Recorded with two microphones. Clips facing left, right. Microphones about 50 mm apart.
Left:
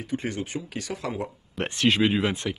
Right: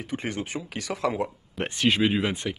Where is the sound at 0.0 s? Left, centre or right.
Right.